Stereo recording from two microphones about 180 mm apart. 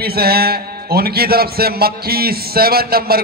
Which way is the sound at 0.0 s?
60° right (ahead or behind).